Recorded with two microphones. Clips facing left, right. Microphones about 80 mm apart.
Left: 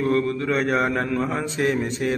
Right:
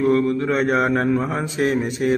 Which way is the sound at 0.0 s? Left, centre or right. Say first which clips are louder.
Right 4 dB; right.